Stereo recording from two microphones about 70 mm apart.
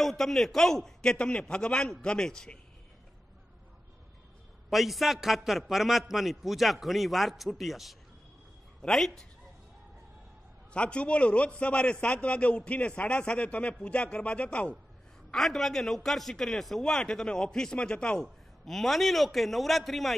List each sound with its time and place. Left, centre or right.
0.0 s a man's voice: centre
4.6 s a man's voice: centre
10.7 s a man's voice: centre
15.3 s a man's voice: centre